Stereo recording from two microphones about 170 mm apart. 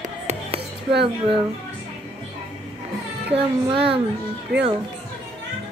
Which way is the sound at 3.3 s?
35° right (ahead or behind).